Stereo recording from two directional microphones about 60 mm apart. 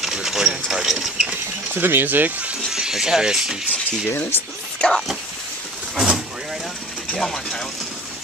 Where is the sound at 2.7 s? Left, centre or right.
Centre.